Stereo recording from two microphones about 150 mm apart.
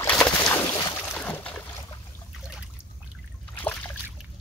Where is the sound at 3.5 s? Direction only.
10° left (ahead or behind).